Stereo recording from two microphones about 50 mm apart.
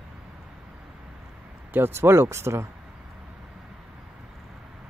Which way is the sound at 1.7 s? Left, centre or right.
Right.